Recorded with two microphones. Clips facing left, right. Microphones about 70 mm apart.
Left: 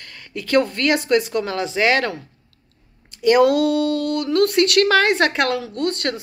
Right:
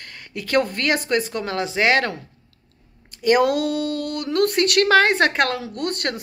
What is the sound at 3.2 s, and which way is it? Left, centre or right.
Speech, right.